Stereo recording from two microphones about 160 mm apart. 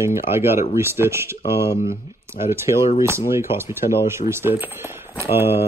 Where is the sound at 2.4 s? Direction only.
15° right (ahead or behind).